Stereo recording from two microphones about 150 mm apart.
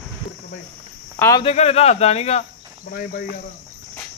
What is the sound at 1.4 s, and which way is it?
Speech, 45° left (ahead or behind).